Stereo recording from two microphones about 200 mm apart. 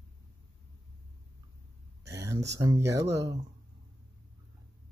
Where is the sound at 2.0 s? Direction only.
15° right (ahead or behind).